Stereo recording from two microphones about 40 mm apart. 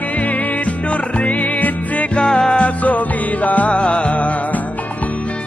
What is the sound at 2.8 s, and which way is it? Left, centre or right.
Music, left.